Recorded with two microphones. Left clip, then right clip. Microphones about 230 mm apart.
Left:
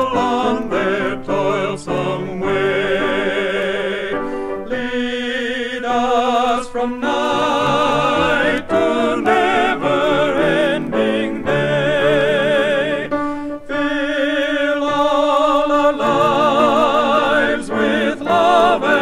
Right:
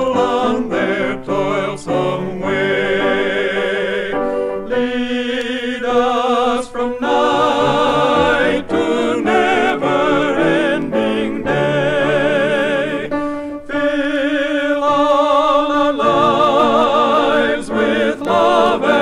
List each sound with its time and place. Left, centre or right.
0.2 s music: right
5.9 s mantra: right
7.1 s music: right
10.5 s music: right
13.8 s music: right
18.3 s choir: right